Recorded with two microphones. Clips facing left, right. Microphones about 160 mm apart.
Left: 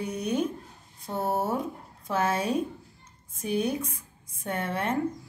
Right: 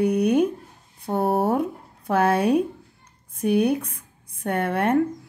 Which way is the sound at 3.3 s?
65° right (ahead or behind).